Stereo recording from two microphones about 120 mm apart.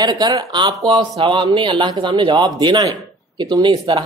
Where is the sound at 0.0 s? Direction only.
35° right (ahead or behind).